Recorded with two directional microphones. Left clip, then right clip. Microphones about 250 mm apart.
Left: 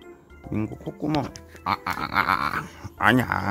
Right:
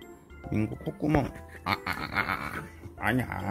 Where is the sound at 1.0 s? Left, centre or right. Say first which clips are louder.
Left 1 dB; centre.